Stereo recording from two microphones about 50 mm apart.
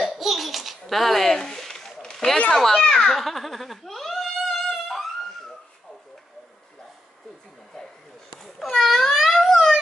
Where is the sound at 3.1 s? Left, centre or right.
Centre.